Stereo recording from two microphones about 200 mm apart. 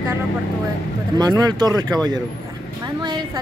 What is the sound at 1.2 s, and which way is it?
Speech, 20° right (ahead or behind).